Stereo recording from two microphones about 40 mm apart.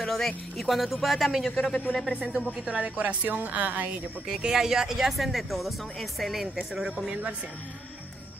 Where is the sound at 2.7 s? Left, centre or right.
Right.